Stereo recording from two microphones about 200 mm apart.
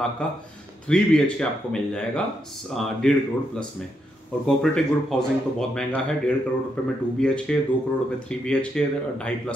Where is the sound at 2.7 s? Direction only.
5° left (ahead or behind).